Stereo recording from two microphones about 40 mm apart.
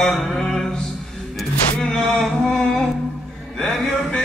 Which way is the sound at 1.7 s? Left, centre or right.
Left.